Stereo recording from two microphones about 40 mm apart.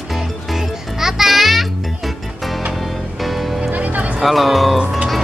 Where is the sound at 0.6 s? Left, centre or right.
Centre.